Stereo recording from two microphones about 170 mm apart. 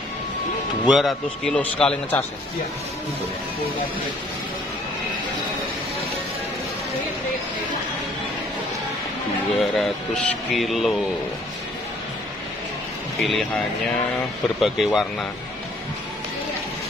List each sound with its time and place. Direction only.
0.8 s speech: centre (ahead or behind)
9.6 s speech: 5° left (ahead or behind)
13.2 s speech: centre (ahead or behind)
14.6 s speech: centre (ahead or behind)